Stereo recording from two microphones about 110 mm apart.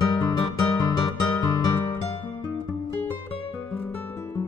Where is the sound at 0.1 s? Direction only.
35° left (ahead or behind).